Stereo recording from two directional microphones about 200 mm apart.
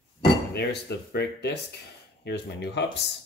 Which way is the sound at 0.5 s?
55° left (ahead or behind).